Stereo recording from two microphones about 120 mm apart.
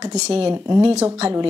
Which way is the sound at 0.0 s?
60° right (ahead or behind).